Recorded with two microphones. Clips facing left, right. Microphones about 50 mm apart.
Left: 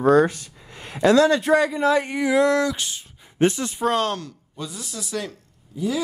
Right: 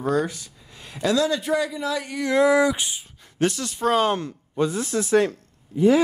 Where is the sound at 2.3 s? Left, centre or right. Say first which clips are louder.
Right 1 dB; centre.